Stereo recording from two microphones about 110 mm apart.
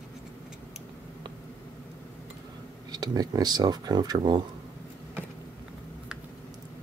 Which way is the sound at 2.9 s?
35° right (ahead or behind).